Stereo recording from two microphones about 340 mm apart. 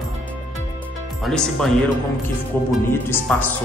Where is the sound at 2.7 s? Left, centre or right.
Centre.